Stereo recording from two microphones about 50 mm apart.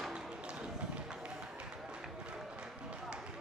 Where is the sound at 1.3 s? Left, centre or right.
Centre.